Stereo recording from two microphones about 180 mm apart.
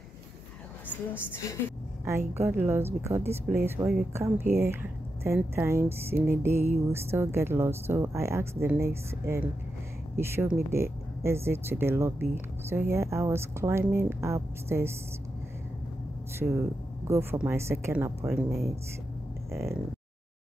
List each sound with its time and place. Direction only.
2.0 s speech: 15° right (ahead or behind)
16.3 s speech: 15° right (ahead or behind)
19.5 s speech: 15° right (ahead or behind)